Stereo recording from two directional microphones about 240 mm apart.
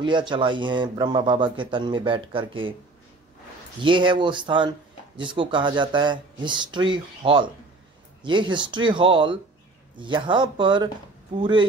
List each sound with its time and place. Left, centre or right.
0.0 s speech: centre
3.8 s speech: centre